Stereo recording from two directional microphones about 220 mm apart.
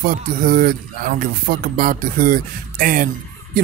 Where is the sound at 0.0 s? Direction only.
40° right (ahead or behind).